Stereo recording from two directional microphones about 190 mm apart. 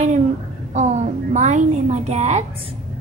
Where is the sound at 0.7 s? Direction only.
40° right (ahead or behind).